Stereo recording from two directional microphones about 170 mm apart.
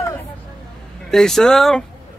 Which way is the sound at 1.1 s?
5° left (ahead or behind).